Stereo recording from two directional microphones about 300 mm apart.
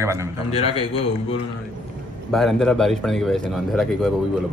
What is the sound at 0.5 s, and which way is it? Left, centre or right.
Speech, centre.